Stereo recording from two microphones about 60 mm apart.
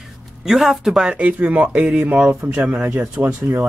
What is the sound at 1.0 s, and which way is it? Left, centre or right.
Speech, right.